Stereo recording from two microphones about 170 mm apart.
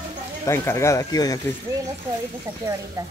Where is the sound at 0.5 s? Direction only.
15° left (ahead or behind).